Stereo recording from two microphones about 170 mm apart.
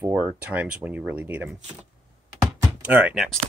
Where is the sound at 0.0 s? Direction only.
10° right (ahead or behind).